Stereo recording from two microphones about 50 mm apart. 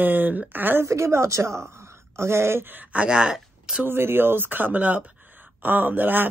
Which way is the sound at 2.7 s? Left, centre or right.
Right.